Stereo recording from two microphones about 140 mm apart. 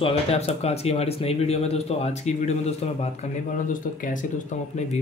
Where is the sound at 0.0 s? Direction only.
45° left (ahead or behind).